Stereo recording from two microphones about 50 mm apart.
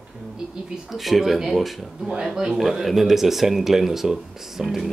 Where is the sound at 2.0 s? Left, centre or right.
Centre.